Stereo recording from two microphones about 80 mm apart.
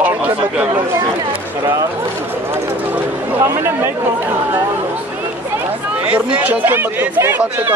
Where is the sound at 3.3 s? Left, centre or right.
Right.